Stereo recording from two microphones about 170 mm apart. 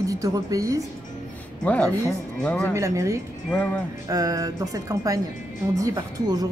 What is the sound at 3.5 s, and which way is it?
Speech, 10° left (ahead or behind).